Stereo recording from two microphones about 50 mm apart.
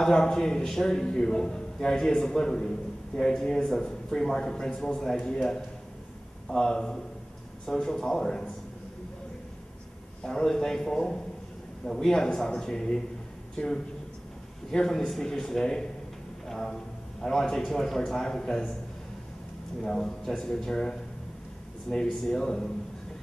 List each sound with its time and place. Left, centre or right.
0.0 s a man's voice: centre
6.5 s a man's voice: centre
10.2 s a man's voice: centre
19.8 s a man's voice: centre